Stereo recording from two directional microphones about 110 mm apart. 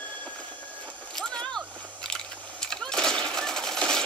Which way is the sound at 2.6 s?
5° left (ahead or behind).